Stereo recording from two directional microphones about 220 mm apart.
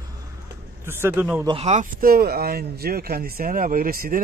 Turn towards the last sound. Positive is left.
turn(degrees=-40)  # may be behind; listen again after turning